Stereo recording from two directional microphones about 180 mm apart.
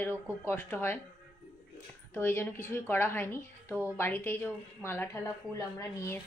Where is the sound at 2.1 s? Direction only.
15° left (ahead or behind).